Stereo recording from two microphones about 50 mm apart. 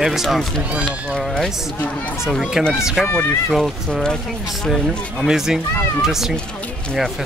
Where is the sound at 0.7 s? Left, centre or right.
Right.